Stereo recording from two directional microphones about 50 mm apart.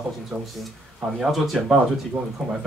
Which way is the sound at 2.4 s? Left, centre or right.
Centre.